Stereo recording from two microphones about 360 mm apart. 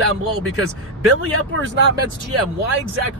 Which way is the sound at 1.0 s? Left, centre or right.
Right.